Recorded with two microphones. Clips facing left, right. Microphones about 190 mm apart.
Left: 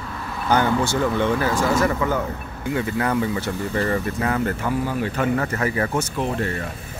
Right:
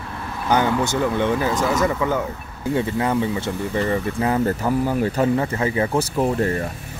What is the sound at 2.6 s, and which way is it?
Speech, 30° right (ahead or behind).